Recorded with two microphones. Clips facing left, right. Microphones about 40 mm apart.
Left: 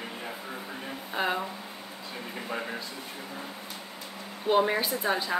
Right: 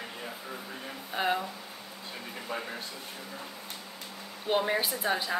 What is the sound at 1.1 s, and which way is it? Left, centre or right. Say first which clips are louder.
Speech: even; centre.